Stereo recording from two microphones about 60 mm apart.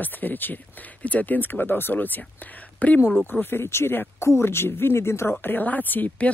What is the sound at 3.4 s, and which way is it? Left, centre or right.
Speech, left.